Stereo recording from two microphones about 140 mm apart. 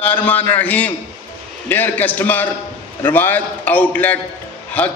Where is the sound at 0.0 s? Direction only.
10° left (ahead or behind).